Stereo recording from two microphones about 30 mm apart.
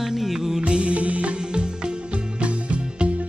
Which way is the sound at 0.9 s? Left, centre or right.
Right.